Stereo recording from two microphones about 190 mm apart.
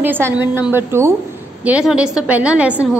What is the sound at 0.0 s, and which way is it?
A woman's voice, 10° right (ahead or behind).